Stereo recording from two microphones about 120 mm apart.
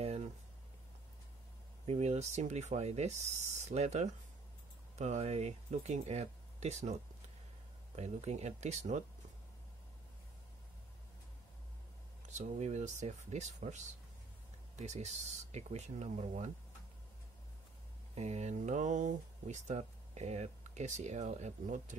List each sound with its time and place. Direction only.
1.9 s speech: 70° right (ahead or behind)
12.3 s speech: 75° right (ahead or behind)
14.8 s speech: 70° right (ahead or behind)
18.1 s speech: 70° right (ahead or behind)